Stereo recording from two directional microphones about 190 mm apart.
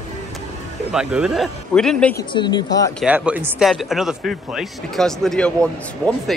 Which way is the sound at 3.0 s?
5° right (ahead or behind).